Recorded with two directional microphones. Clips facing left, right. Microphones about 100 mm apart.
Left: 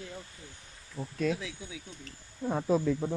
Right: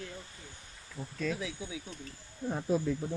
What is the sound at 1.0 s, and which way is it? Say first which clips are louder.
Speech: left 4 dB; 35° left (ahead or behind).